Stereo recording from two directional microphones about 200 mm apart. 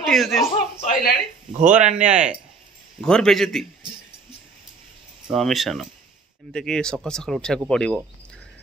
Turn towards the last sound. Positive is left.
turn(degrees=5)  # may be behind; listen again after turning